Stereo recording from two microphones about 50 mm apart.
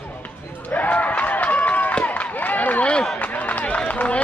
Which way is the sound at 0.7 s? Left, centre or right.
Left.